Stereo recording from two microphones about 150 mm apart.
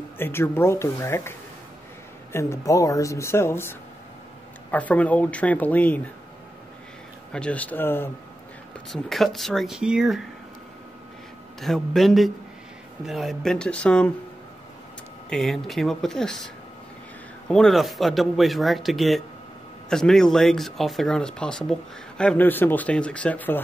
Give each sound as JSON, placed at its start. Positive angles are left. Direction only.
{"t": 0.2, "sound": "speech", "side_deg": 15}
{"t": 2.3, "sound": "a woman's voice", "side_deg": 20}
{"t": 7.3, "sound": "speech", "side_deg": 10}
{"t": 8.9, "sound": "speech", "side_deg": 0}
{"t": 11.6, "sound": "speech", "side_deg": 0}
{"t": 15.2, "sound": "speech", "side_deg": 0}
{"t": 17.5, "sound": "speech", "side_deg": 5}